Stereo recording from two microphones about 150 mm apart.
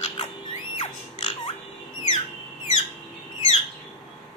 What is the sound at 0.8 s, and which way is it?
Music, 45° left (ahead or behind).